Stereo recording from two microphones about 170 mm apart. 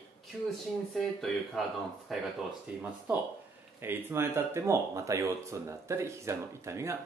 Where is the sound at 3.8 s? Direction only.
15° right (ahead or behind).